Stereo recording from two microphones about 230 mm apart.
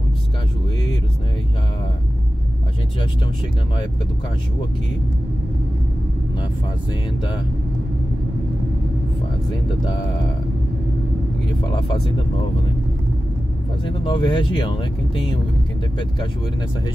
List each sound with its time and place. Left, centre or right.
14.0 s speech: left